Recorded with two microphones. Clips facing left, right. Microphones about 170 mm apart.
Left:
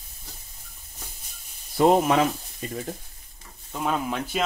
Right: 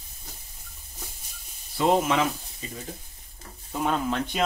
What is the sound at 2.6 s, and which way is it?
Speech, 60° left (ahead or behind).